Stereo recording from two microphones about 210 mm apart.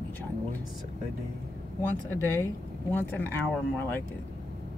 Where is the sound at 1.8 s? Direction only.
10° left (ahead or behind).